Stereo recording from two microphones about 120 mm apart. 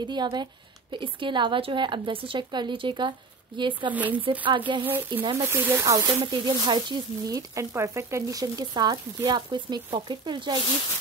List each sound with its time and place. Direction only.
0.0 s a woman's voice: 40° right (ahead or behind)
3.9 s speech: 10° right (ahead or behind)
4.5 s a woman's voice: 40° right (ahead or behind)
4.8 s speech: 15° right (ahead or behind); by 7.3 s 40° right (ahead or behind)
7.3 s speech: 25° right (ahead or behind)